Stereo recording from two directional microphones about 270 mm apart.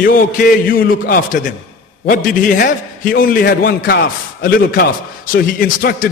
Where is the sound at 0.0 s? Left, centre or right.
Left.